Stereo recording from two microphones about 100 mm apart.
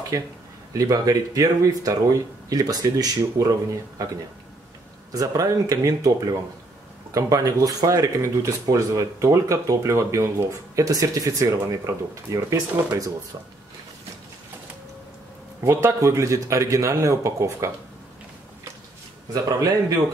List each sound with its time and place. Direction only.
0.1 s speech: 35° right (ahead or behind)
5.1 s speech: 35° right (ahead or behind)
15.6 s speech: 30° right (ahead or behind)